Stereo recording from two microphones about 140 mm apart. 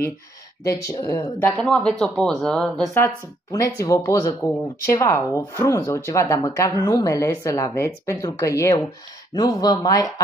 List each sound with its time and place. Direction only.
0.7 s speech: 25° left (ahead or behind)
1.4 s speech: 5° left (ahead or behind)
3.6 s speech: 20° left (ahead or behind)